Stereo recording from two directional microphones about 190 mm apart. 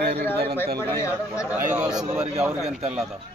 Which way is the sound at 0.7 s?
15° left (ahead or behind).